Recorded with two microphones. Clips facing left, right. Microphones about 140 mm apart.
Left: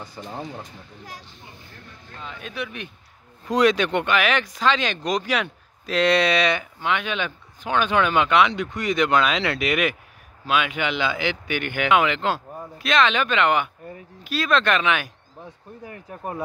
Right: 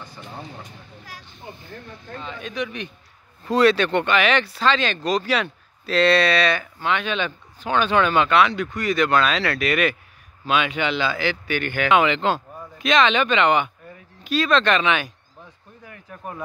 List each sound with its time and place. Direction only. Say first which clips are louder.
0.2 s speech: left 6 dB; 20° left (ahead or behind)
2.1 s speech: right 3 dB; 5° left (ahead or behind)
15.8 s speech: left 3 dB; 30° left (ahead or behind)